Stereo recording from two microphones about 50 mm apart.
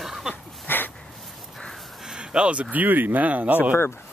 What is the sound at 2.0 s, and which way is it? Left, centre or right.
Speech, centre.